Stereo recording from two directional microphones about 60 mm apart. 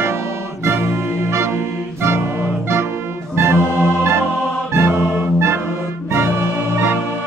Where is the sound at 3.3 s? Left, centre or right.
Right.